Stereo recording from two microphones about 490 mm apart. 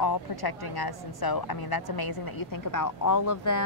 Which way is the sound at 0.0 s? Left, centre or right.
Left.